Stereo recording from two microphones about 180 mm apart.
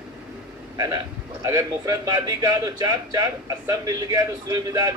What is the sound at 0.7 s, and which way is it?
A man's voice, 20° right (ahead or behind).